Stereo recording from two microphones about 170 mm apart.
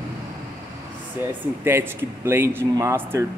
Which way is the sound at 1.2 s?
10° right (ahead or behind).